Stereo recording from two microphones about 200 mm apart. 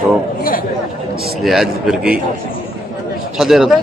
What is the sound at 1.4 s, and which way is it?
Speech, centre (ahead or behind).